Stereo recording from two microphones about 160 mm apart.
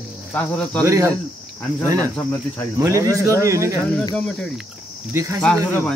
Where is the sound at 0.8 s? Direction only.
20° right (ahead or behind).